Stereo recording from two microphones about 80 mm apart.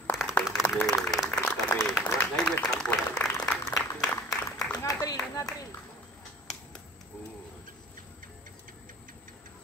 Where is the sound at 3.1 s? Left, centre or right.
Left.